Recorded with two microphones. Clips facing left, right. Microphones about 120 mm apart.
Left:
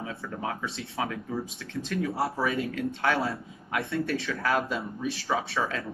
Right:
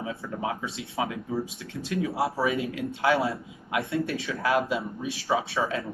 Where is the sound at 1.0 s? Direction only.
15° right (ahead or behind).